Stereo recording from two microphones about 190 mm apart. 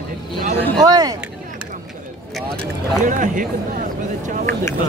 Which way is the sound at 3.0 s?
45° right (ahead or behind).